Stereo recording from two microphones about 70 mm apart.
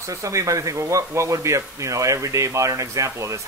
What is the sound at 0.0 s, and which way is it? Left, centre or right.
Speech, right.